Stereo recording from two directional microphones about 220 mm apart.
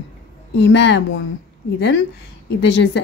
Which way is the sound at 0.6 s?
50° left (ahead or behind).